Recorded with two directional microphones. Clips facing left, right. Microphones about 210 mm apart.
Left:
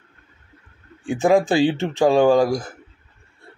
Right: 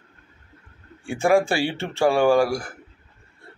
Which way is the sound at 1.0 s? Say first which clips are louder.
Left 2 dB; 20° left (ahead or behind).